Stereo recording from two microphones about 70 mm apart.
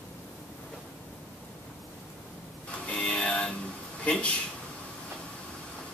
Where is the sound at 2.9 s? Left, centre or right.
Centre.